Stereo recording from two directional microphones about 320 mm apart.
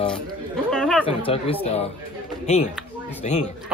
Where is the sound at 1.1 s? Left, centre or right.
Centre.